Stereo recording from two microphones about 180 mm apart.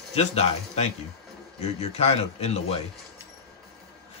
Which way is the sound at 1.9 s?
35° left (ahead or behind).